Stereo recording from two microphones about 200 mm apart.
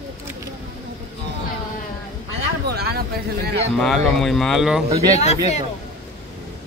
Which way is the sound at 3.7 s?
Centre (ahead or behind).